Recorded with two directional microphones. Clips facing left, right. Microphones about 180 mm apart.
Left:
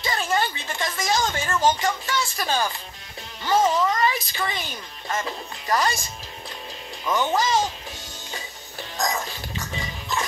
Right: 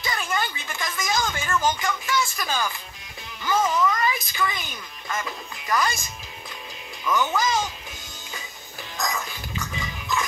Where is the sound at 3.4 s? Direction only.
30° left (ahead or behind).